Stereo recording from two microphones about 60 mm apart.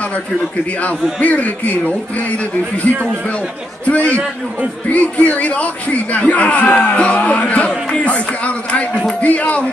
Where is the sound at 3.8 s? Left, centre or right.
Left.